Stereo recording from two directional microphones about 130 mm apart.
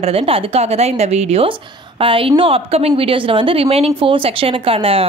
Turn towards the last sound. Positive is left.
turn(degrees=-45)  # may be behind; listen again after turning